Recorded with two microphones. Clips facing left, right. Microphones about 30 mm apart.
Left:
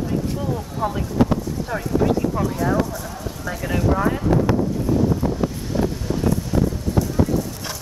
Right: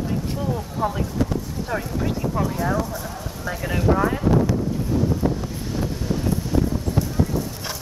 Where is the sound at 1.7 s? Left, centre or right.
Centre.